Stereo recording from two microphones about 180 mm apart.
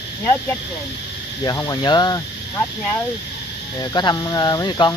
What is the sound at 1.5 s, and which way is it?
Speech, 20° left (ahead or behind).